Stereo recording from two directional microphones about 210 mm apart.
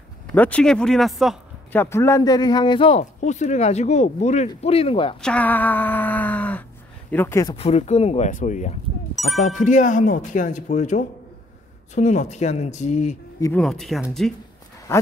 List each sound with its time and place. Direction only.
0.3 s speech: 5° left (ahead or behind); by 5.1 s 25° left (ahead or behind)
5.2 s speech: 5° left (ahead or behind)
7.5 s speech: 30° left (ahead or behind)
9.1 s music: centre (ahead or behind)
9.6 s speech: 35° left (ahead or behind)
13.4 s speech: 5° left (ahead or behind)
14.9 s speech: 10° left (ahead or behind)